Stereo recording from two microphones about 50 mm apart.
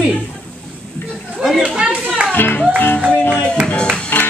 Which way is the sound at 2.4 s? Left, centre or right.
Left.